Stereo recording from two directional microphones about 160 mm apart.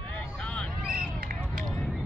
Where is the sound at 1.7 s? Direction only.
Centre (ahead or behind).